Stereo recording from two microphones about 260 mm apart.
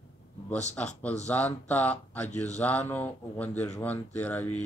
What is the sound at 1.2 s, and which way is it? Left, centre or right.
A man's voice, centre.